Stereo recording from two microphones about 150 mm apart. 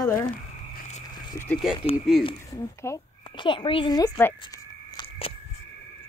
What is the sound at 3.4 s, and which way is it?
Speech, 35° left (ahead or behind).